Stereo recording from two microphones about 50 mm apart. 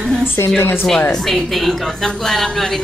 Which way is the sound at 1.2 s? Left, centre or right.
Centre.